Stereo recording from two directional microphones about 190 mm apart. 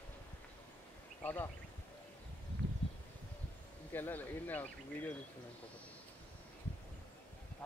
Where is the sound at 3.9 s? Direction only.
10° left (ahead or behind).